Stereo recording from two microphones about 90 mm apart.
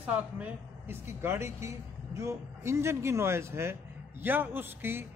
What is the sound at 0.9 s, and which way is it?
Speech, 25° right (ahead or behind).